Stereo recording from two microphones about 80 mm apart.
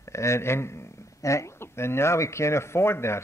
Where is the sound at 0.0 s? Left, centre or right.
Left.